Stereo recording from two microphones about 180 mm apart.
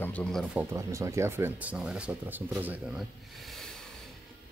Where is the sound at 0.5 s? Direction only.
15° right (ahead or behind); by 3.9 s 5° left (ahead or behind).